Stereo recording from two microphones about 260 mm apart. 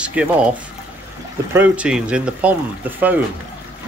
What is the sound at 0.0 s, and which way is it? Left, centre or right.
Speech, centre.